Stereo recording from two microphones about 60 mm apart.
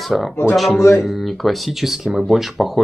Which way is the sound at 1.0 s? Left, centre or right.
Centre.